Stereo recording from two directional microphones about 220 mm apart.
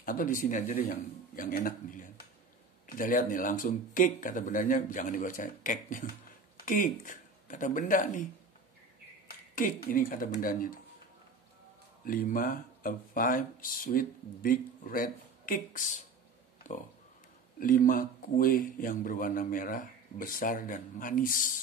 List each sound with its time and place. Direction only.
0.0 s speech: 40° left (ahead or behind)
9.6 s speech: 40° left (ahead or behind)
12.0 s speech: 40° left (ahead or behind)
17.6 s speech: 40° left (ahead or behind)